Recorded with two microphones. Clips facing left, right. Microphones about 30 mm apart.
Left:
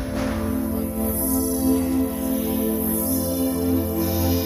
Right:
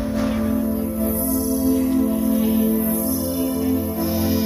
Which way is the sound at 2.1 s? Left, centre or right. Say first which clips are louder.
Right 5 dB; centre.